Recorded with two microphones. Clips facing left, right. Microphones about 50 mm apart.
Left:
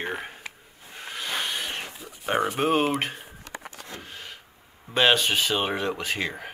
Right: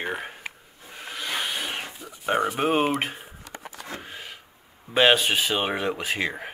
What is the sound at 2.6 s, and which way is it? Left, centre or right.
Speech, centre.